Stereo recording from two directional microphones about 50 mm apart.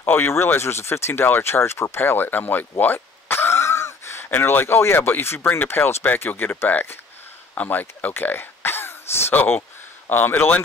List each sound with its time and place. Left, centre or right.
0.0 s speech: left
0.6 s speech: left
2.0 s speech: left
2.8 s throat clearing: left
5.7 s speech: left
7.5 s speech: left
8.0 s throat clearing: left
9.5 s a sound: left